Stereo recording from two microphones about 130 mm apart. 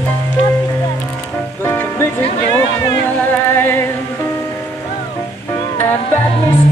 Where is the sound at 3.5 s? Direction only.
20° left (ahead or behind).